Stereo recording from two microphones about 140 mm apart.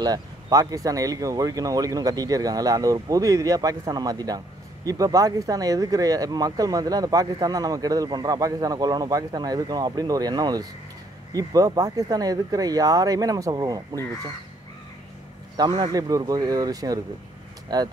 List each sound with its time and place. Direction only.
0.0 s speech: 25° right (ahead or behind)
15.8 s speech: 25° right (ahead or behind)